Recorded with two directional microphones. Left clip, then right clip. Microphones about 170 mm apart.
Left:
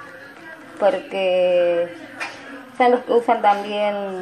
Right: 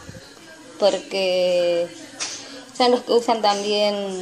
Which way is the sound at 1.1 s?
55° right (ahead or behind).